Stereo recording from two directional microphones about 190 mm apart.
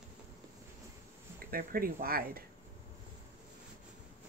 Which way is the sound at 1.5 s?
50° right (ahead or behind).